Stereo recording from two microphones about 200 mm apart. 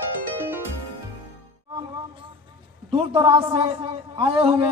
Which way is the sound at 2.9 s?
25° right (ahead or behind).